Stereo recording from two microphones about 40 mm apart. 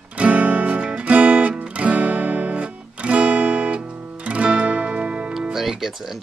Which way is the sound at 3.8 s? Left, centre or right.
Right.